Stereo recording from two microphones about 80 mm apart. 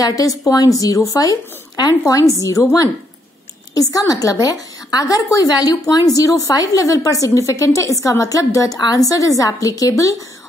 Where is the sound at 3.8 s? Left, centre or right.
Left.